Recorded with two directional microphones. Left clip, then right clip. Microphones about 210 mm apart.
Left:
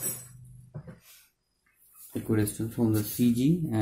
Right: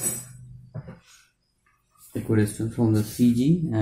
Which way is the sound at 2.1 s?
35° left (ahead or behind).